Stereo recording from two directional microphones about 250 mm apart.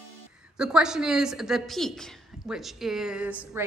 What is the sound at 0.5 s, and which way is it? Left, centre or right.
Speech, centre.